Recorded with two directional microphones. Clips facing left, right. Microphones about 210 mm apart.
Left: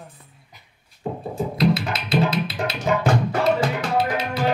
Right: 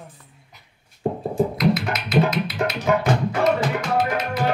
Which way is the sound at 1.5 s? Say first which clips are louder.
Even; 30° left (ahead or behind).